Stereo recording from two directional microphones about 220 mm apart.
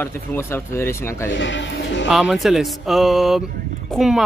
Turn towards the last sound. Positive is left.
turn(degrees=0)  # may be behind; listen again after turning